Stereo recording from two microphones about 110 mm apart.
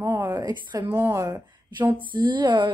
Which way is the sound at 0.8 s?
20° right (ahead or behind).